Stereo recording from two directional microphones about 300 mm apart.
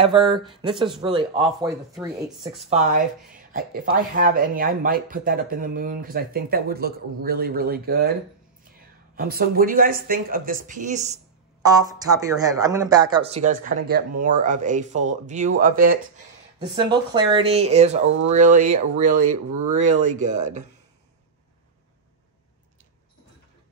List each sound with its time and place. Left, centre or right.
0.0 s speech: centre
2.0 s speech: centre
2.7 s speech: right
11.6 s speech: centre; by 16.0 s right
16.5 s speech: centre